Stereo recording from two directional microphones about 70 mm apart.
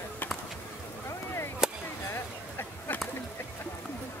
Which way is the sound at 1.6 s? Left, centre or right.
Centre.